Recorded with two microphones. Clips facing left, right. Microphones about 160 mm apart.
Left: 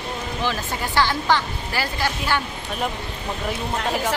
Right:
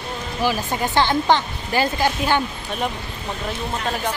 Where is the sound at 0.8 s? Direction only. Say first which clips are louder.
Right 3 dB; 20° right (ahead or behind).